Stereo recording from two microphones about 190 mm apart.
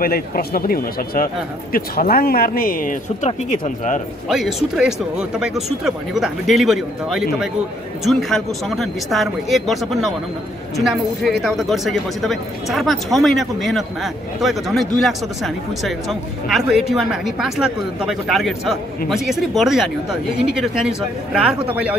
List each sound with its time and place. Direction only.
0.0 s speech: 50° left (ahead or behind)
4.3 s a man's voice: centre (ahead or behind)